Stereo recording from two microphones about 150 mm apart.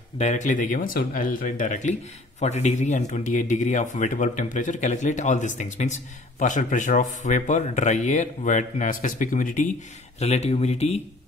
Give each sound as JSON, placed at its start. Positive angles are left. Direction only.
{"t": 0.2, "sound": "speech", "side_deg": 50}
{"t": 10.1, "sound": "speech", "side_deg": 45}